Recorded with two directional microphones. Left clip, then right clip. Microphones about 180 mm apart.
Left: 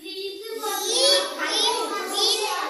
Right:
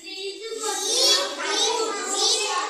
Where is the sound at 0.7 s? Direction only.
Centre (ahead or behind).